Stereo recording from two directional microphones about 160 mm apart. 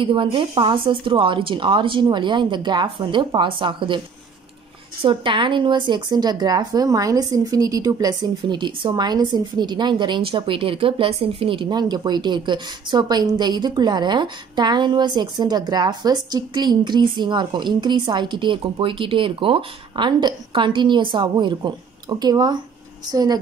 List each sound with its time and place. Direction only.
0.0 s speech: 30° right (ahead or behind)
5.0 s speech: 30° right (ahead or behind)